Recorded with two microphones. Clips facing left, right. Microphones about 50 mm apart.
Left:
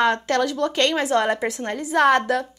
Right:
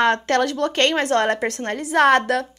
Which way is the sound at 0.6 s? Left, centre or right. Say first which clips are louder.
Right 1 dB; right.